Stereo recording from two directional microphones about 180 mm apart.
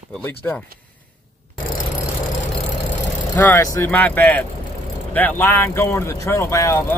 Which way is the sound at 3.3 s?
10° left (ahead or behind).